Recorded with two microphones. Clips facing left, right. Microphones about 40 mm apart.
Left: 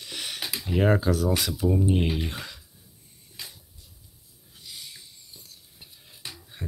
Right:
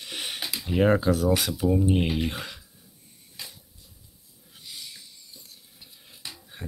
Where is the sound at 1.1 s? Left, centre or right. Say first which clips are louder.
Right 2 dB; centre.